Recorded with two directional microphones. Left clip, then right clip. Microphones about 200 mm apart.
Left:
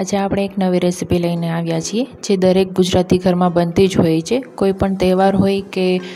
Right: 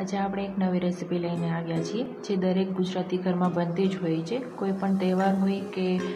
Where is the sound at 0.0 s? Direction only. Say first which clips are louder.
Left 11 dB; 45° left (ahead or behind).